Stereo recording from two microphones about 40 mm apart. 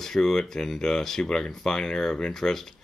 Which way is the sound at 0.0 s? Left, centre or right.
Centre.